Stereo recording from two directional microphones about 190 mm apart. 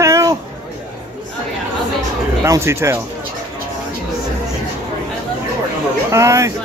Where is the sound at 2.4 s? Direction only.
15° right (ahead or behind).